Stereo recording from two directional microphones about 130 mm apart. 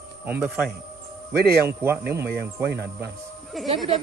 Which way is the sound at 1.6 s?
20° right (ahead or behind).